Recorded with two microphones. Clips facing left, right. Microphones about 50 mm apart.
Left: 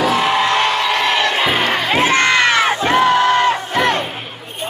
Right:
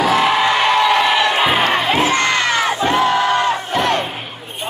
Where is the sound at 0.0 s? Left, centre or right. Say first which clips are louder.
Right 1 dB; centre.